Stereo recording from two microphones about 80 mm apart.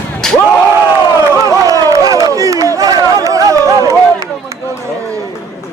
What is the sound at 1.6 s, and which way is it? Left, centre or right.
Crowd, right.